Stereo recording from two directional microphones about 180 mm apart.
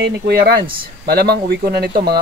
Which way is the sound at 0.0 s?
60° right (ahead or behind).